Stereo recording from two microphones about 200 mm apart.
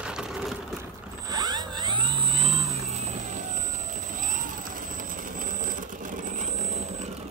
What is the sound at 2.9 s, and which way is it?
Vehicle, 35° right (ahead or behind).